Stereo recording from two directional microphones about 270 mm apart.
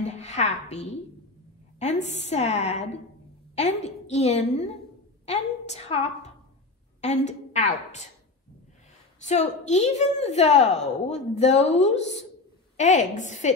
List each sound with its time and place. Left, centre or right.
0.2 s a woman's voice: left
9.2 s a woman's voice: left